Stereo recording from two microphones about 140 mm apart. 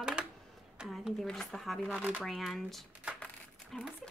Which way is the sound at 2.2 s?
Centre (ahead or behind).